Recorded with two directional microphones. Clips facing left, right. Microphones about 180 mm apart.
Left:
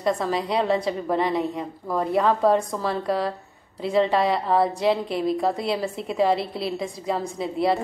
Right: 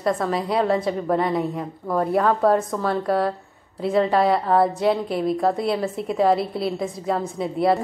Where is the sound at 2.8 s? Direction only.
30° left (ahead or behind).